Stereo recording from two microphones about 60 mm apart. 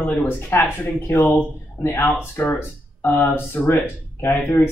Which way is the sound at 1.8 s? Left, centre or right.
Left.